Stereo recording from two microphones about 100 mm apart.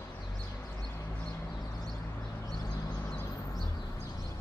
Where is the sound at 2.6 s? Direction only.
40° left (ahead or behind).